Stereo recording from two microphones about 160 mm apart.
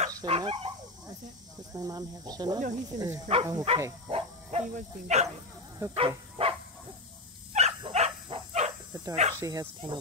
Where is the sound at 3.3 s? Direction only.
35° right (ahead or behind).